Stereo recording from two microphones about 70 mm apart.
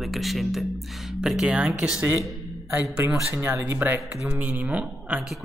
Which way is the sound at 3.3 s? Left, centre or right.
Right.